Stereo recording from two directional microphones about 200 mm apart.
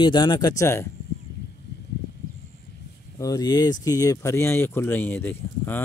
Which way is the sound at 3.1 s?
20° left (ahead or behind).